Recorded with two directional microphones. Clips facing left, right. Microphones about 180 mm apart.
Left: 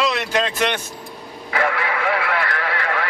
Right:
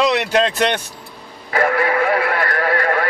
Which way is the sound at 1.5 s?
45° right (ahead or behind).